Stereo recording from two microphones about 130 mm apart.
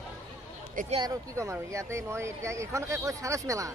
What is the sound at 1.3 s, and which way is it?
Speech, 20° right (ahead or behind).